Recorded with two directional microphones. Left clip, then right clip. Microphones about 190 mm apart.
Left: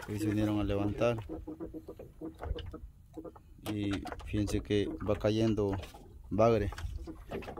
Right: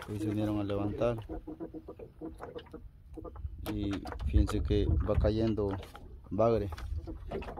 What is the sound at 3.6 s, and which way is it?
Speech, 10° left (ahead or behind).